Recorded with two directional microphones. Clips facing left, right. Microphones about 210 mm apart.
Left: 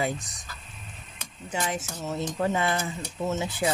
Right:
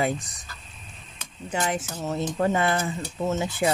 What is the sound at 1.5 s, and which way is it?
Speech, 55° right (ahead or behind).